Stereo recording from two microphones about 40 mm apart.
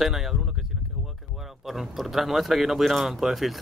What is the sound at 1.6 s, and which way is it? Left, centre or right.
Speech, centre.